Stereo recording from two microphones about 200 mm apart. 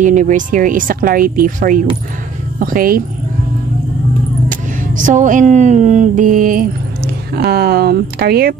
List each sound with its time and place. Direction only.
0.0 s speech: 40° right (ahead or behind)
4.5 s a sound: 40° right (ahead or behind)
7.3 s speech: 50° right (ahead or behind)